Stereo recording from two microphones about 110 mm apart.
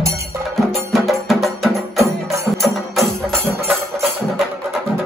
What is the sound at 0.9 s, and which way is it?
Music, centre (ahead or behind).